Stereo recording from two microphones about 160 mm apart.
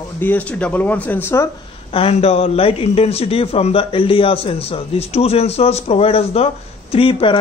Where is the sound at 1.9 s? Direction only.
40° left (ahead or behind).